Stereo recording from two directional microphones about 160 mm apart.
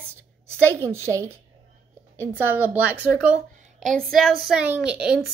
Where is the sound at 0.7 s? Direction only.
20° right (ahead or behind).